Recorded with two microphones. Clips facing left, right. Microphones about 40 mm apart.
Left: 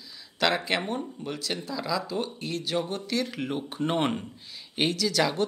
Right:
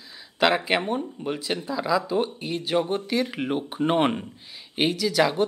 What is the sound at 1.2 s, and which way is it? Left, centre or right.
Speech, right.